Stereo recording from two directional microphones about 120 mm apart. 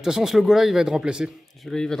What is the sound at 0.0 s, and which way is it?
A man's voice, 5° right (ahead or behind).